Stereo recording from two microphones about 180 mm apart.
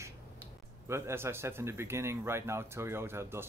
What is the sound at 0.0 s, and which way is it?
Speech, 15° right (ahead or behind).